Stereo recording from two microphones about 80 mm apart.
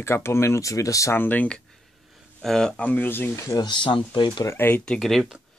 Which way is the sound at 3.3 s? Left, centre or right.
Left.